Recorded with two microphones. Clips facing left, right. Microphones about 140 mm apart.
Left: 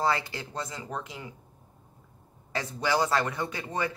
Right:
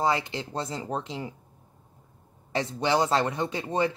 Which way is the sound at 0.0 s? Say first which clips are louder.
Right 2 dB; 20° right (ahead or behind).